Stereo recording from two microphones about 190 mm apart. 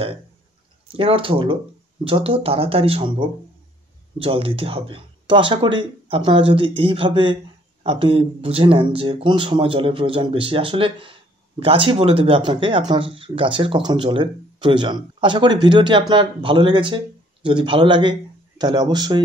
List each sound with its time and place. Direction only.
0.8 s speech: 30° right (ahead or behind)